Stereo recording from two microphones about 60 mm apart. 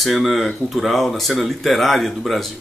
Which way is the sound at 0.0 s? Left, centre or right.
Centre.